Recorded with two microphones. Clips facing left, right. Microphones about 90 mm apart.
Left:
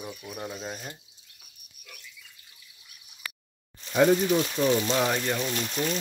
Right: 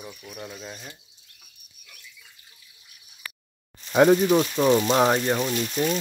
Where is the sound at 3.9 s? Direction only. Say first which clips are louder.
Right 4 dB; 65° right (ahead or behind).